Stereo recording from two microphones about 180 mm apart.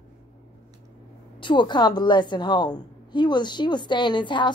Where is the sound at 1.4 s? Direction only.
25° left (ahead or behind).